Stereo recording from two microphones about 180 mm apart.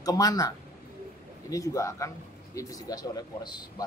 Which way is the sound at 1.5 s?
20° left (ahead or behind).